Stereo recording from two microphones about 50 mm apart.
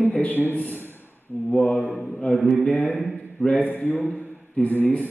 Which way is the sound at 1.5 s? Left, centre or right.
Left.